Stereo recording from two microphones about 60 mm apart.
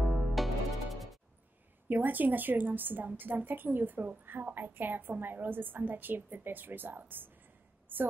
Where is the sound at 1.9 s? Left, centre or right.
Right.